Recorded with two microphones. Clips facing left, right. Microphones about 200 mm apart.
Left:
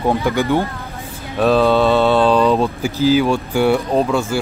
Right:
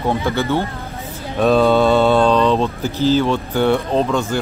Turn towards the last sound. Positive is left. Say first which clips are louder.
# left 1 dB
turn(degrees=10)  # may be behind; listen again after turning